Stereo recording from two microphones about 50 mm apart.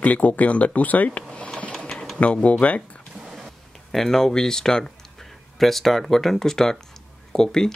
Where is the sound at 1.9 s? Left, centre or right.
Centre.